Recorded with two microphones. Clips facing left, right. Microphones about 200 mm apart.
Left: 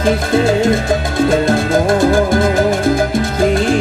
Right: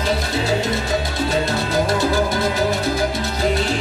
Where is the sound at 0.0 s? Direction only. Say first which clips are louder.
Left 8 dB; 50° left (ahead or behind).